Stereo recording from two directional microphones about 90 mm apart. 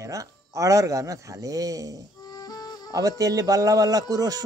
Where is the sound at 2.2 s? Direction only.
45° left (ahead or behind).